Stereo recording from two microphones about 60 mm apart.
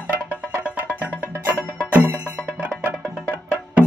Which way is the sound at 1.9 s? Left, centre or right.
Right.